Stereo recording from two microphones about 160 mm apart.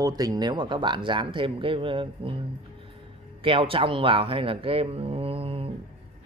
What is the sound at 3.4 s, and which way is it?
A man's voice, 35° right (ahead or behind).